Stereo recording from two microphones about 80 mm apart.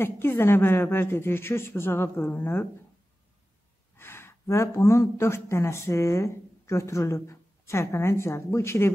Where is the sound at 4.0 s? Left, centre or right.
Left.